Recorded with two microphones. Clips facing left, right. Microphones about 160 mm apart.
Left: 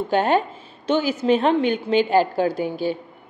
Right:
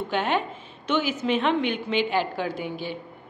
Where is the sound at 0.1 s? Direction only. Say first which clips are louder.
Left 7 dB; 40° left (ahead or behind).